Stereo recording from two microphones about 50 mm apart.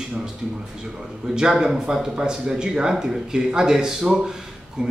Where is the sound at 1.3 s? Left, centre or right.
Centre.